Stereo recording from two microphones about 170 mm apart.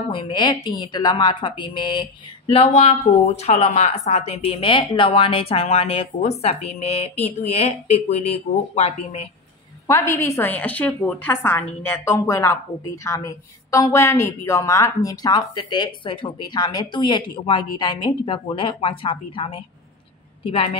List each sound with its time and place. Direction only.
0.1 s a woman's voice: 30° left (ahead or behind)
9.8 s a woman's voice: 15° left (ahead or behind); by 20.7 s 30° left (ahead or behind)